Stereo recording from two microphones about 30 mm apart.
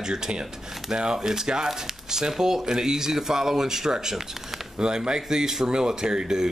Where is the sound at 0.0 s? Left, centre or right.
Right.